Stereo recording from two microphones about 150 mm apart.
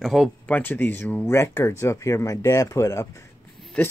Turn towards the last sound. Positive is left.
turn(degrees=10)  # may be behind; listen again after turning